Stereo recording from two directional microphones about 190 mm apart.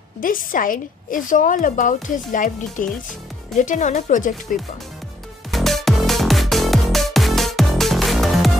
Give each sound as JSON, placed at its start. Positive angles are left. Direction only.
{"t": 0.2, "sound": "a woman's voice", "side_deg": 45}
{"t": 5.5, "sound": "music", "side_deg": 0}